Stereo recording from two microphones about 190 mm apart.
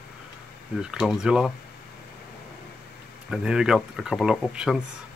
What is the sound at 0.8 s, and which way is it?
Speech, 5° right (ahead or behind).